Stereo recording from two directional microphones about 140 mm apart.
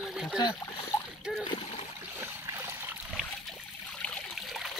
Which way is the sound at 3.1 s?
5° left (ahead or behind).